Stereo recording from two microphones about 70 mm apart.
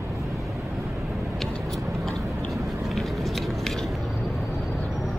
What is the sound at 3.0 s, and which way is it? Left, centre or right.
Biting, centre.